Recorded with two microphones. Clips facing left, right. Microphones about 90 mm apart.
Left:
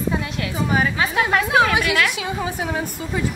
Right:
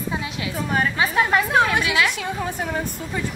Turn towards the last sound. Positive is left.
turn(degrees=5)  # may be behind; listen again after turning